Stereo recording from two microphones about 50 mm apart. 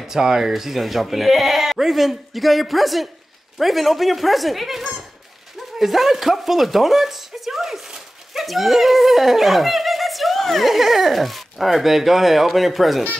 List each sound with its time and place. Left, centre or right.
0.0 s speech: centre